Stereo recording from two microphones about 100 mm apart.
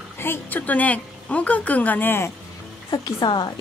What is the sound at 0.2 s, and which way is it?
A woman's voice, 20° left (ahead or behind).